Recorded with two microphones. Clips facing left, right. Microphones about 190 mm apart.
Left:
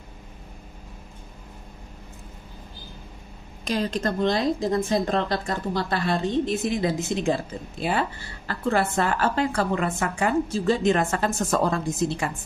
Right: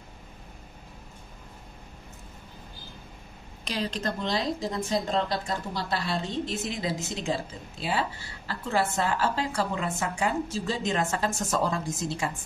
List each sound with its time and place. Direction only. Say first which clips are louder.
3.6 s a woman's voice: left 5 dB; 50° left (ahead or behind)